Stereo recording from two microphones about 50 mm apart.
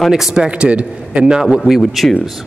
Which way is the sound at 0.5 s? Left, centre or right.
Right.